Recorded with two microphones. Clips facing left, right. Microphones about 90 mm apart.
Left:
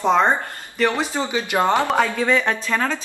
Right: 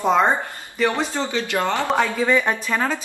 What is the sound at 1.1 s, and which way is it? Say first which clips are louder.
Speech: left 1 dB; 15° left (ahead or behind).